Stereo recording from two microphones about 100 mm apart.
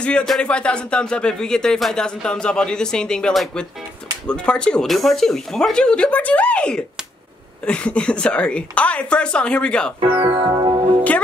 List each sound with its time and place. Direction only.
0.0 s speech: 5° left (ahead or behind)
9.9 s speech: 65° right (ahead or behind)
10.3 s music: 45° right (ahead or behind)